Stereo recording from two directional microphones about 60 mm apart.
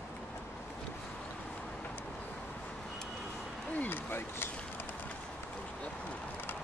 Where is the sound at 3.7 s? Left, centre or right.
Left.